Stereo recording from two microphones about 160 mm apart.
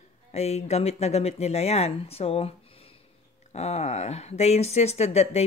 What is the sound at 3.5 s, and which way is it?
Speech, 45° left (ahead or behind).